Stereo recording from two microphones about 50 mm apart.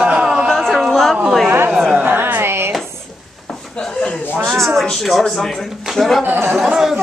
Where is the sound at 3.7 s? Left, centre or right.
Centre.